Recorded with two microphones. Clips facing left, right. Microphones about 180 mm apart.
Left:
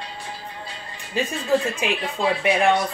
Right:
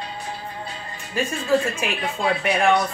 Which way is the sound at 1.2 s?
20° left (ahead or behind).